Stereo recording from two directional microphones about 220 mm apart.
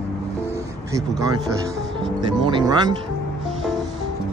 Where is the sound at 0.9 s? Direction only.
15° right (ahead or behind).